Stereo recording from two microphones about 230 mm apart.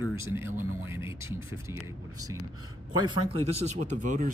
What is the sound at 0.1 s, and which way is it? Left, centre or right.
Speech, centre.